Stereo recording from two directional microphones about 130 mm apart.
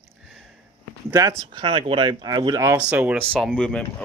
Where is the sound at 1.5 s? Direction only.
35° right (ahead or behind).